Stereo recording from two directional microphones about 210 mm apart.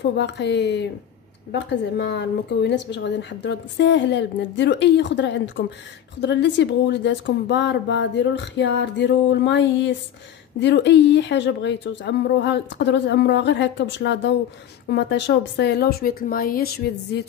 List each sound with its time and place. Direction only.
0.0 s a woman's voice: 55° left (ahead or behind)